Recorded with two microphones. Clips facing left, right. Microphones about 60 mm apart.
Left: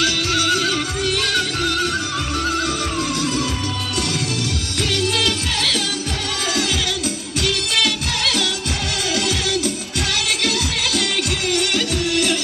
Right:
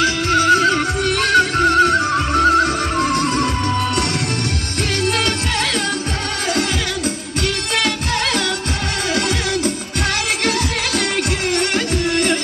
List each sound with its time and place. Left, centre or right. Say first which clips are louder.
0.0 s music: right 5 dB; right
5.0 s music: right 2 dB; right
7.4 s music: right 1 dB; right
11.0 s music: right 3 dB; right